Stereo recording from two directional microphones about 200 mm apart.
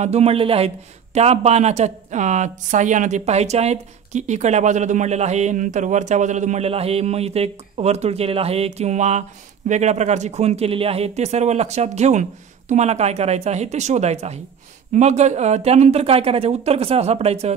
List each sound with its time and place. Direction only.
0.0 s speech: 30° right (ahead or behind)